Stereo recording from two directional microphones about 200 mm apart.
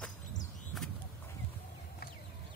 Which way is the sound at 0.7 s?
Centre (ahead or behind).